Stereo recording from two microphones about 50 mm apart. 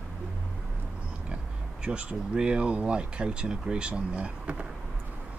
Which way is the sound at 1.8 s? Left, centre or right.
Right.